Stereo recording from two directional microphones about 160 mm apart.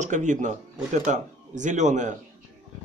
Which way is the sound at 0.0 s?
50° right (ahead or behind).